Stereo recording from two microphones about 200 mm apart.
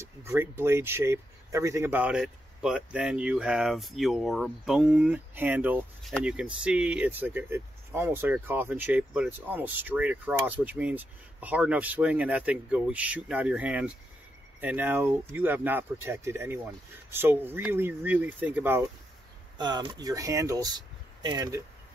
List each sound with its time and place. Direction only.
0.0 s speech: 10° right (ahead or behind)
19.6 s speech: 20° right (ahead or behind)